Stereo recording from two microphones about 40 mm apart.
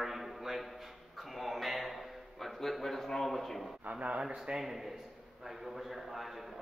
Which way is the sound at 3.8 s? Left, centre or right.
Right.